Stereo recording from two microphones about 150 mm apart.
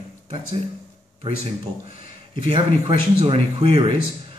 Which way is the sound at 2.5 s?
40° right (ahead or behind).